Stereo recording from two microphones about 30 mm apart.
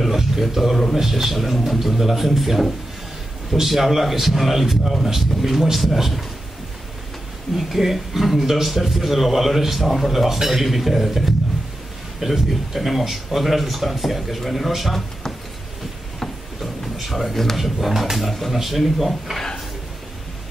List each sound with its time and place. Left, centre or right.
0.1 s a man's voice: centre
7.5 s a man's voice: centre
10.1 s a man's voice: centre
12.4 s a man's voice: centre
16.9 s a man's voice: centre
19.3 s speech: centre